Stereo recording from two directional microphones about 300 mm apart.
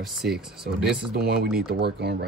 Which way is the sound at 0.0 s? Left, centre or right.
Centre.